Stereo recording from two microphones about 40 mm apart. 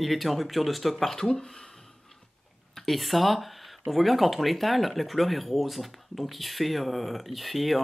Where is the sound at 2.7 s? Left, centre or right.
Centre.